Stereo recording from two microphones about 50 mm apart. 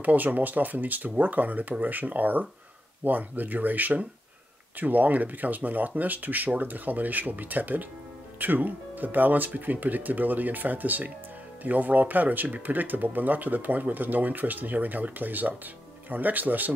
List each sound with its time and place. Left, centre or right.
0.0 s speech: right